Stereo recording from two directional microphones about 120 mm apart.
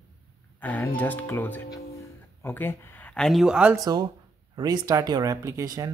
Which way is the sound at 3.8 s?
35° right (ahead or behind).